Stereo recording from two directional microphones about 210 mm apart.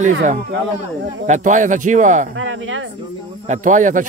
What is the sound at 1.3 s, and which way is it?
Speech, 35° right (ahead or behind).